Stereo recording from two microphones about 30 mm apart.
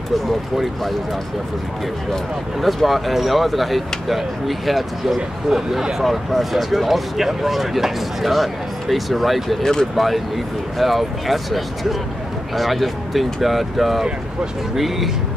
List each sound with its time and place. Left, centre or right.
0.3 s speech: centre
2.6 s speech: centre
5.5 s speech: centre
6.0 s speech: centre
9.6 s speech: centre
9.9 s speech: centre